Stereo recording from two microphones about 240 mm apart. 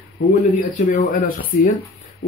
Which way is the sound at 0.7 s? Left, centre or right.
Left.